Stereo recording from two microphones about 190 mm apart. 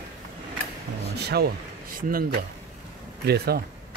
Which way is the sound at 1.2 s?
55° right (ahead or behind).